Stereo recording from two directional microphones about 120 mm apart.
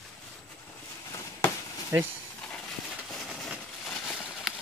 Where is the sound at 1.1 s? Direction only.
25° left (ahead or behind).